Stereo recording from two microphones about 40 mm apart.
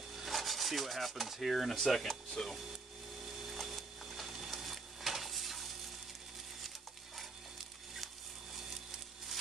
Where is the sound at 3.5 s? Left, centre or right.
Centre.